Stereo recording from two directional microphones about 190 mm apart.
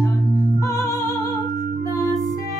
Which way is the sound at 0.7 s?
15° left (ahead or behind).